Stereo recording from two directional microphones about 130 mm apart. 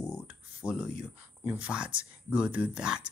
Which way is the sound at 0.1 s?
10° right (ahead or behind).